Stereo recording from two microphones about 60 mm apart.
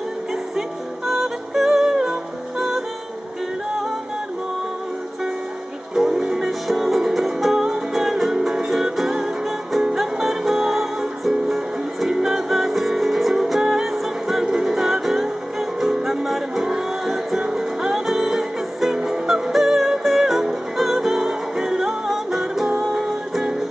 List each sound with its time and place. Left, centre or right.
0.3 s music: centre
5.9 s music: centre